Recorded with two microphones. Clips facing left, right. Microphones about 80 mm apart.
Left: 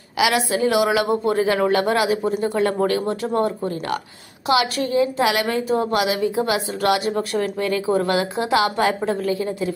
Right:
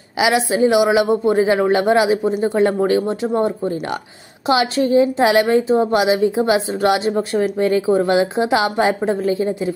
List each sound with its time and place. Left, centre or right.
0.2 s a woman's voice: right